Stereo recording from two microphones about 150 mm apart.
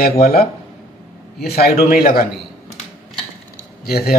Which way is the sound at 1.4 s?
90° left.